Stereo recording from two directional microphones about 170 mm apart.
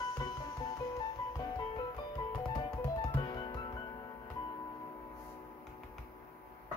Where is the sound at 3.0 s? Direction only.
25° left (ahead or behind).